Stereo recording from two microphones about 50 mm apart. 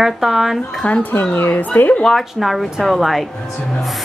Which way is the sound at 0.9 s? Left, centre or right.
Left.